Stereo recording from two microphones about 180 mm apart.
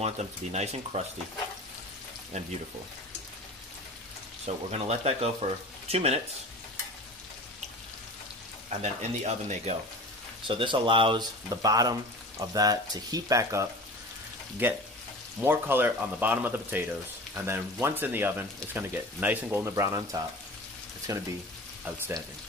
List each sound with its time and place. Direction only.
0.0 s speech: 40° right (ahead or behind)
2.3 s speech: 40° right (ahead or behind)
4.5 s speech: 35° right (ahead or behind)
8.6 s speech: 40° right (ahead or behind)
10.4 s speech: 25° right (ahead or behind)